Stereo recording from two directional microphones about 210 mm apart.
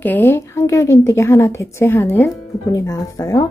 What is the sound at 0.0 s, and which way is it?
Speech, 10° left (ahead or behind).